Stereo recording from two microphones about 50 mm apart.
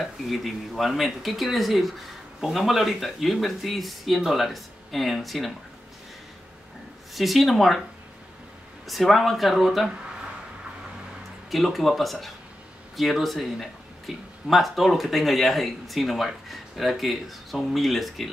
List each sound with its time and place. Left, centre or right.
0.0 s speech: centre
7.2 s speech: centre
8.8 s speech: centre
11.5 s speech: centre